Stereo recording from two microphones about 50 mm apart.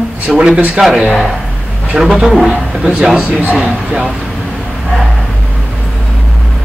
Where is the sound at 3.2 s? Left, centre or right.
Right.